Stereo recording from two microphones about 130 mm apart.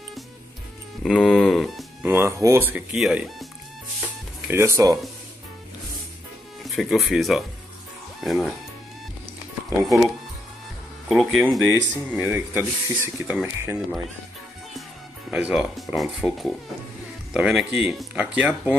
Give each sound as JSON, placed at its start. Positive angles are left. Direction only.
{"t": 1.0, "sound": "a sound", "side_deg": 5}
{"t": 2.0, "sound": "music", "side_deg": -20}
{"t": 2.9, "sound": "speech", "side_deg": -5}
{"t": 4.5, "sound": "speech", "side_deg": -20}
{"t": 6.6, "sound": "speech", "side_deg": 0}
{"t": 9.8, "sound": "speech", "side_deg": 0}
{"t": 11.7, "sound": "speech", "side_deg": -15}
{"t": 15.3, "sound": "speech", "side_deg": -10}